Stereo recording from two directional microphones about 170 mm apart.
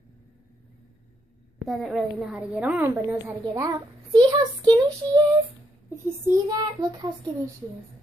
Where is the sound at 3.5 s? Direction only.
20° right (ahead or behind).